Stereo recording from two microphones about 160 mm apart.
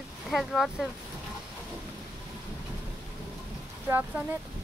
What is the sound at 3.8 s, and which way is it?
Speech, 10° right (ahead or behind).